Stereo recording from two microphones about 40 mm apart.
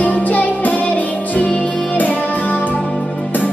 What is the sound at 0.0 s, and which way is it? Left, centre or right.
Music, left.